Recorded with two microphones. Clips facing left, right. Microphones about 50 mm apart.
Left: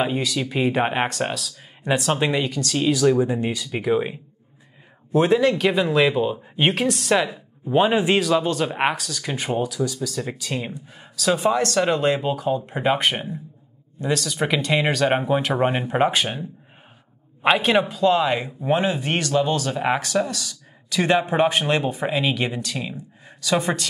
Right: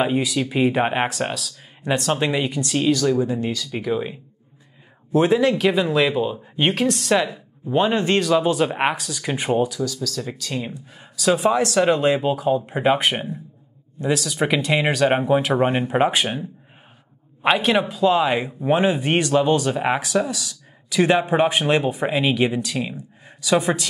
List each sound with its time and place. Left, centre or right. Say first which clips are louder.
0.0 s speech: right 2 dB; centre
2.4 s speech: right 2 dB; centre
2.8 s speech: even; centre
3.1 s speech: left 1 dB; left
5.1 s speech: even; centre
8.5 s speech: right 2 dB; centre
9.8 s speech: left 1 dB; centre
10.6 s speech: right 1 dB; centre
17.4 s speech: even; centre